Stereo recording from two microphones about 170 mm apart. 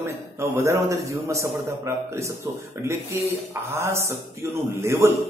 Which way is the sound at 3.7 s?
15° right (ahead or behind).